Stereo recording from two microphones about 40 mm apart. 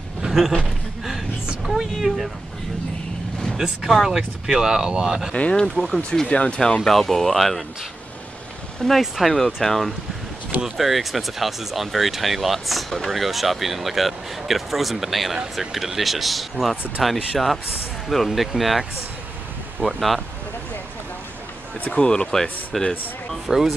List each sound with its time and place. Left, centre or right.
0.2 s a sound: centre
1.7 s speech: centre
3.5 s speech: centre
4.5 s speech: centre
5.8 s speech: left
6.2 s speech: left
6.6 s speech: centre
9.0 s speech: centre
21.9 s speech: left
22.7 s speech: centre
23.5 s speech: centre